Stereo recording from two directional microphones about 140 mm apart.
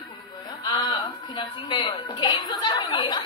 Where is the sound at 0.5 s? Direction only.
30° left (ahead or behind).